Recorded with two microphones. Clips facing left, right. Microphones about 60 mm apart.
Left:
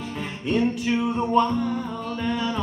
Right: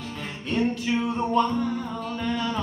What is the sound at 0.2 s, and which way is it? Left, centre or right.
Music, centre.